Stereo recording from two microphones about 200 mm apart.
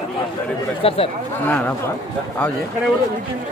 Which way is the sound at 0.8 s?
30° left (ahead or behind).